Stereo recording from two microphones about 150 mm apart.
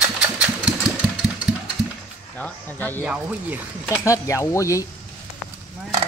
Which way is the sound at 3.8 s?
20° left (ahead or behind).